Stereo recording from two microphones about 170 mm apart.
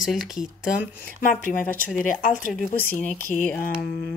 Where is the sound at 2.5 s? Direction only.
10° left (ahead or behind).